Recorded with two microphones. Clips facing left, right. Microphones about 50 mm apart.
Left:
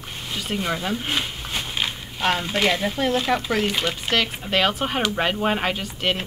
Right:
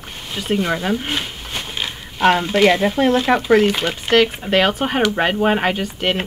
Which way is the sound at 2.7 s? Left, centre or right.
Right.